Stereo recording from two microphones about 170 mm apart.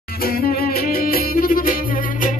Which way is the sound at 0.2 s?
60° left (ahead or behind).